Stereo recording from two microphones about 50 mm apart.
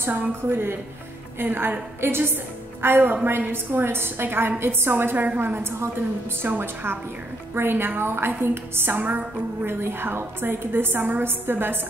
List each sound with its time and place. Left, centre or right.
0.3 s a woman's voice: right
5.1 s a woman's voice: right
5.4 s a woman's voice: right
6.4 s a woman's voice: right